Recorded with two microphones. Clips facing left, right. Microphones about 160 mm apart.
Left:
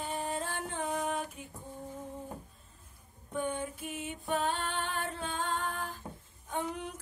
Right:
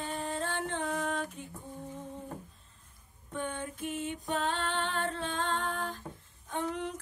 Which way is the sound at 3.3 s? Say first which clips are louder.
Left 2 dB; 10° left (ahead or behind).